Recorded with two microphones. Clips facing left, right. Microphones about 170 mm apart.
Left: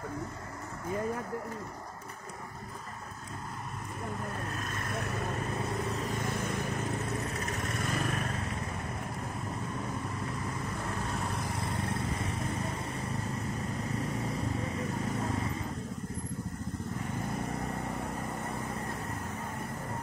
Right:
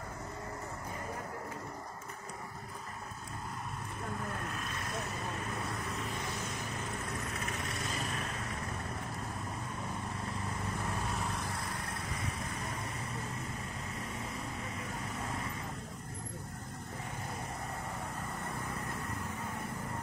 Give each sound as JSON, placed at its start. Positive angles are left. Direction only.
{"t": 4.6, "sound": "vehicle", "side_deg": 50}
{"t": 6.2, "sound": "vehicle", "side_deg": 50}
{"t": 7.5, "sound": "vehicle", "side_deg": 50}